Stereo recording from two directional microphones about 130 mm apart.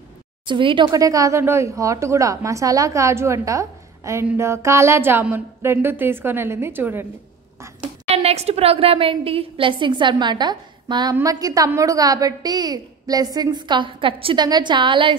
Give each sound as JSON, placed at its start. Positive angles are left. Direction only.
{"t": 0.5, "sound": "a woman's voice", "side_deg": -40}
{"t": 0.9, "sound": "a woman's voice", "side_deg": -25}
{"t": 4.4, "sound": "a sound", "side_deg": -20}
{"t": 8.1, "sound": "a woman's voice", "side_deg": -55}